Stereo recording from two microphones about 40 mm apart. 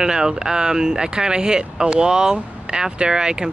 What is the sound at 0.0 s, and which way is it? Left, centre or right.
Speech, centre.